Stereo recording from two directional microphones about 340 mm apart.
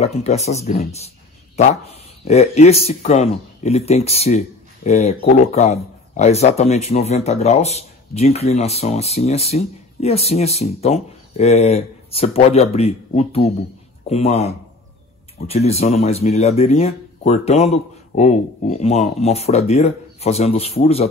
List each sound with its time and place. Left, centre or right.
0.0 s speech: centre
2.2 s speech: centre